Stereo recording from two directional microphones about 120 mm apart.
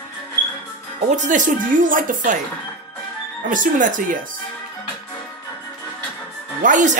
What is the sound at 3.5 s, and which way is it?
Speech, 90° right.